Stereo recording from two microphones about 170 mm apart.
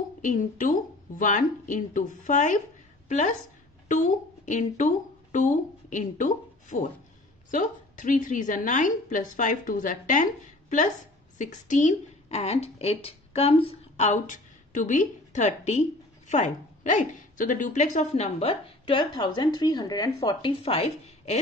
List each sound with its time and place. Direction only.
0.2 s a woman's voice: 50° left (ahead or behind)